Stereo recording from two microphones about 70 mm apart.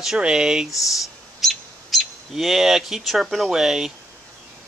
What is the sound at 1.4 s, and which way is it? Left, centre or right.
Speech, centre.